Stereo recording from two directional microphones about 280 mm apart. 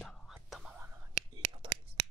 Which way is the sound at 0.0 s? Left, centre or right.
Centre.